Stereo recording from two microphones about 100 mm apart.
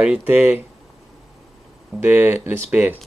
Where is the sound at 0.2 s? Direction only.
20° right (ahead or behind).